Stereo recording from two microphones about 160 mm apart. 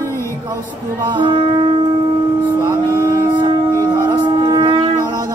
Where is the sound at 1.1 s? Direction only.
30° right (ahead or behind).